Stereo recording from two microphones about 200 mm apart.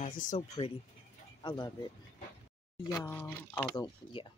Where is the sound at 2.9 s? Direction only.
15° left (ahead or behind).